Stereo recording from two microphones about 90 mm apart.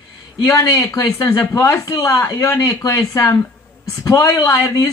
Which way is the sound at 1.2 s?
30° left (ahead or behind).